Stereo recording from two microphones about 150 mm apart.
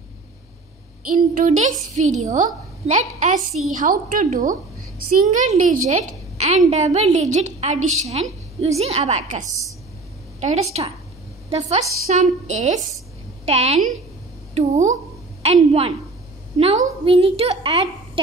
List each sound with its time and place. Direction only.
1.1 s a woman's voice: 60° right (ahead or behind)
5.2 s a woman's voice: 55° right (ahead or behind)
12.1 s a woman's voice: 50° right (ahead or behind)